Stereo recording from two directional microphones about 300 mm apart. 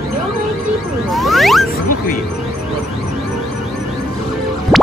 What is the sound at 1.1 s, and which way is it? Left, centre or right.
Whoosh, centre.